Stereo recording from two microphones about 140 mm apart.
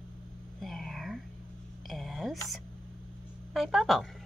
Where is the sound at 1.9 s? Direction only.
Centre (ahead or behind).